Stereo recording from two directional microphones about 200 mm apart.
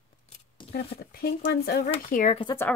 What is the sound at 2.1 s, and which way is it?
Speech, 40° left (ahead or behind).